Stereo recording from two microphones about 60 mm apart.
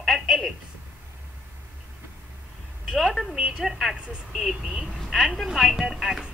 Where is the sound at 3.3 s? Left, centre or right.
Centre.